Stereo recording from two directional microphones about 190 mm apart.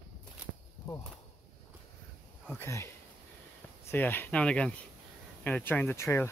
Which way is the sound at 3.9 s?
10° left (ahead or behind).